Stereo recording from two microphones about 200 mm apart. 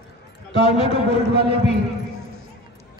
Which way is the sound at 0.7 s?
30° left (ahead or behind).